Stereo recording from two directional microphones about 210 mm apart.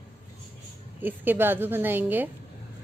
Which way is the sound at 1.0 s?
10° right (ahead or behind).